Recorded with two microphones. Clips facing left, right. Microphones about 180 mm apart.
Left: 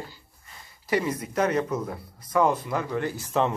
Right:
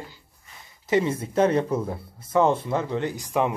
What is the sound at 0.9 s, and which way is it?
Speech, 25° right (ahead or behind).